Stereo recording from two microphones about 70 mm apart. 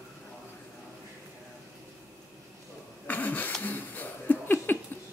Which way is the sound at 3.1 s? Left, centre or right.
Left.